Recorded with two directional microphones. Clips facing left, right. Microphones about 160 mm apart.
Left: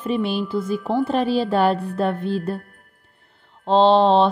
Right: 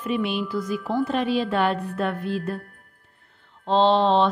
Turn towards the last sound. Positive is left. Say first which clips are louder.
# left 4 dB
turn(degrees=30)  # may be behind; listen again after turning